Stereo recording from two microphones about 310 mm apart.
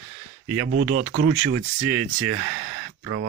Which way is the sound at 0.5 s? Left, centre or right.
Right.